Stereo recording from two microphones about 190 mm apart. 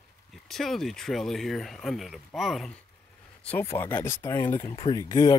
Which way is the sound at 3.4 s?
10° left (ahead or behind).